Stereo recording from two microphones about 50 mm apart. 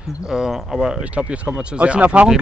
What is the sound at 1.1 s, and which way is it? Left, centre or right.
Speech, right.